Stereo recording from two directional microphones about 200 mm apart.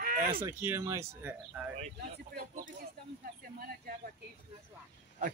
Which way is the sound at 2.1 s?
50° right (ahead or behind).